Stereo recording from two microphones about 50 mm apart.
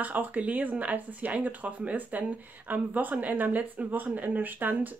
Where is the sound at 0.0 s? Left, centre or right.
Right.